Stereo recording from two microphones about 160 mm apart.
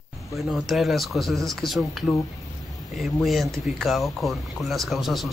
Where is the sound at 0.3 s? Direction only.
Centre (ahead or behind).